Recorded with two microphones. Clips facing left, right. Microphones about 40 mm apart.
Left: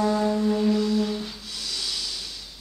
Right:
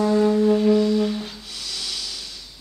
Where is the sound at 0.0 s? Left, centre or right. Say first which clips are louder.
Right 5 dB; centre.